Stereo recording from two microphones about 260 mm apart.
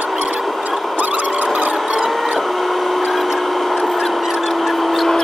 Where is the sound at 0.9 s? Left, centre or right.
Centre.